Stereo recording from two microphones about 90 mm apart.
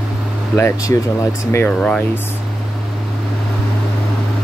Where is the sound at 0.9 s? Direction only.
25° left (ahead or behind).